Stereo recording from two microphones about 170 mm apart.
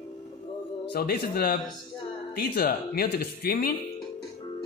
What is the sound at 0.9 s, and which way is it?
Speech, 65° left (ahead or behind).